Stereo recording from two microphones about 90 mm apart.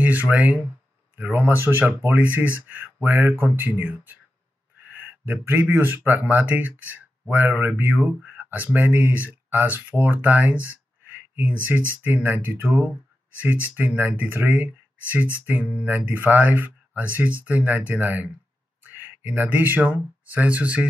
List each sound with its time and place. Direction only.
0.0 s speech: 20° right (ahead or behind)